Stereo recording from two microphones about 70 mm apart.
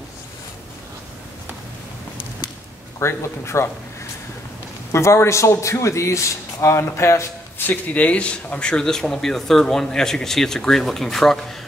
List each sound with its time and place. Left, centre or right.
3.0 s speech: left
4.9 s a man's voice: left
7.5 s speech: left; by 11.3 s centre